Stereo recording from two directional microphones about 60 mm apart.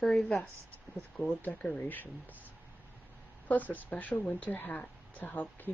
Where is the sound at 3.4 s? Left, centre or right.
Left.